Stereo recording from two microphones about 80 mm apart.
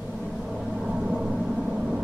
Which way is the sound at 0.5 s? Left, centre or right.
Centre.